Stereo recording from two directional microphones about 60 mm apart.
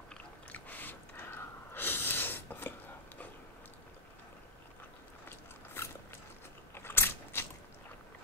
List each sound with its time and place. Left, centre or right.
0.1 s chewing: left
6.7 s biting: left